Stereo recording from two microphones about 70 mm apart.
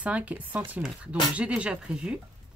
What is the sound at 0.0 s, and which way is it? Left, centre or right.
Speech, centre.